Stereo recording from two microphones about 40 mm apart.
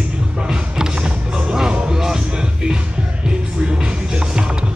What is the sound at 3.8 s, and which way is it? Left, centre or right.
Music, right.